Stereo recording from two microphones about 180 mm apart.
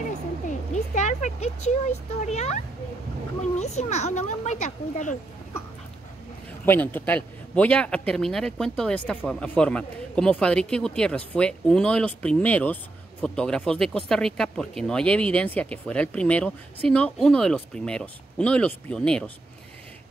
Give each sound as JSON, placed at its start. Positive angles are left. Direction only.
{"t": 0.5, "sound": "speech", "side_deg": 40}
{"t": 6.6, "sound": "speech", "side_deg": 10}